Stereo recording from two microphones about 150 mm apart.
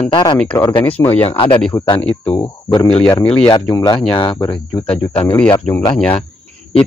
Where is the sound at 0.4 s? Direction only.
10° left (ahead or behind).